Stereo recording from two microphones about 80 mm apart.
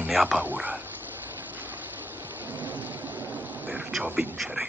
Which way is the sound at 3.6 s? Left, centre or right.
Centre.